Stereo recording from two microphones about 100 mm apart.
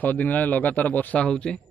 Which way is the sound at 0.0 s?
15° left (ahead or behind).